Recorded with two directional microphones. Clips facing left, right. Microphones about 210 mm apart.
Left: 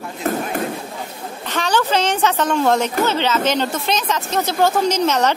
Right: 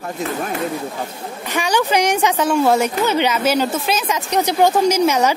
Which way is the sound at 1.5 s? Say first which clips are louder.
Right 1 dB; 10° right (ahead or behind).